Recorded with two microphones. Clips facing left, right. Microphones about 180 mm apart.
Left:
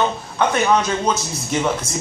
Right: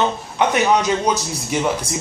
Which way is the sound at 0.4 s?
15° right (ahead or behind).